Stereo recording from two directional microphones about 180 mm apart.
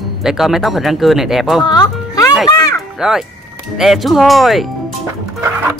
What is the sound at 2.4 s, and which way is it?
Speech, 20° left (ahead or behind).